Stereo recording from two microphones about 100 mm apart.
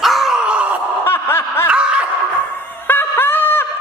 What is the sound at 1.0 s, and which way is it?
Snicker, 25° left (ahead or behind).